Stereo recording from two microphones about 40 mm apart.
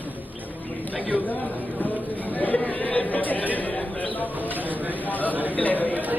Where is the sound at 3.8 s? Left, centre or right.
Left.